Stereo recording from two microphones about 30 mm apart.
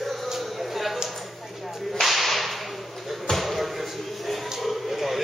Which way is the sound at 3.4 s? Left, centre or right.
Centre.